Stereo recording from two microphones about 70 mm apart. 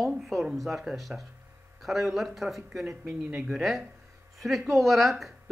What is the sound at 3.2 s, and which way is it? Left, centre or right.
Speech, centre.